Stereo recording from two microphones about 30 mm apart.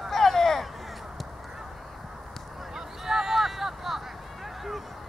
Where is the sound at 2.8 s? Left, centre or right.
Centre.